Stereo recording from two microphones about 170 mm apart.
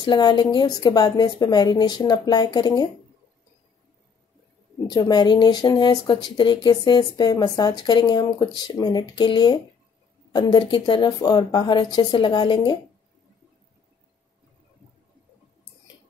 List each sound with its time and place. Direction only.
0.0 s speech: 25° left (ahead or behind)
4.8 s speech: 25° left (ahead or behind)